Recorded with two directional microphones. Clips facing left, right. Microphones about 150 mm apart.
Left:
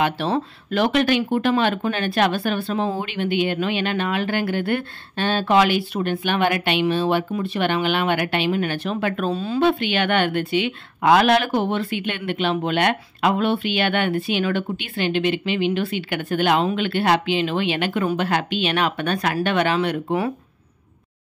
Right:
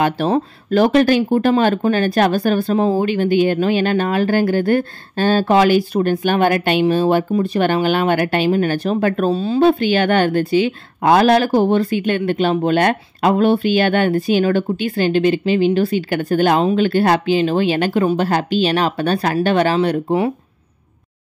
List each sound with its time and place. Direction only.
0.0 s speech: 40° right (ahead or behind)